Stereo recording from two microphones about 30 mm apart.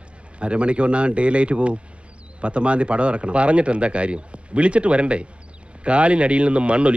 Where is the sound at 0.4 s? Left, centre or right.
Right.